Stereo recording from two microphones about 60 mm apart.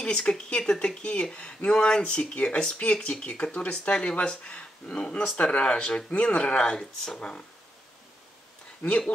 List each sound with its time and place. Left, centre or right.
0.0 s speech: centre
8.8 s speech: left